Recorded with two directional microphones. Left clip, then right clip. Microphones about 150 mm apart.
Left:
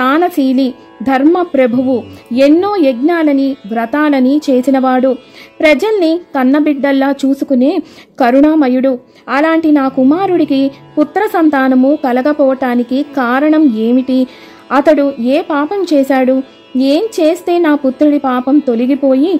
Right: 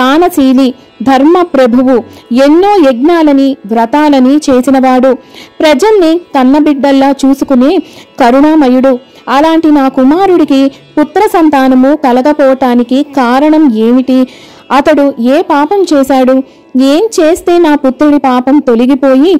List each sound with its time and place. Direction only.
0.0 s a woman's voice: 25° right (ahead or behind)